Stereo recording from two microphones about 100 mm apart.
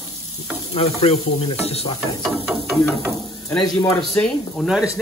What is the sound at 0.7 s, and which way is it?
Stir, 75° left (ahead or behind).